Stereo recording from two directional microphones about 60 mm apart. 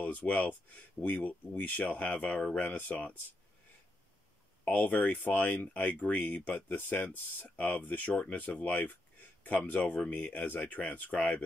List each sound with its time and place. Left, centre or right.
0.0 s a sound: left
0.3 s speech: centre
4.6 s speech: left
10.0 s speech: left